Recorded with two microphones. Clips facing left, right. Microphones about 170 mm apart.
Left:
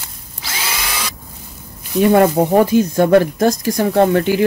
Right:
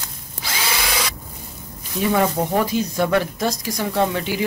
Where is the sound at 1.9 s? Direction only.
60° left (ahead or behind).